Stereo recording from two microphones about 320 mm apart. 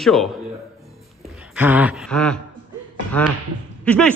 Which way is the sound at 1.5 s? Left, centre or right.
Centre.